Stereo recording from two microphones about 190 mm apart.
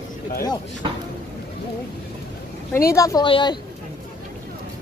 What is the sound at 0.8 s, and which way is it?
Speech, 25° right (ahead or behind).